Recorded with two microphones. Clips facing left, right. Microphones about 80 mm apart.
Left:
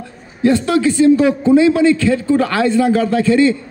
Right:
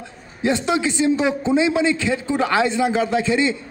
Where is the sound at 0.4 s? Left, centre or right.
Centre.